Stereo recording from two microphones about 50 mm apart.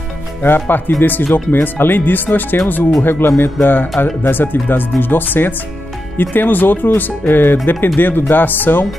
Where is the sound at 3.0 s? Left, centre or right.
Left.